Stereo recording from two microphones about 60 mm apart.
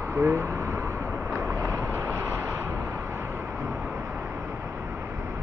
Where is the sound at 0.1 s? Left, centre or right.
Right.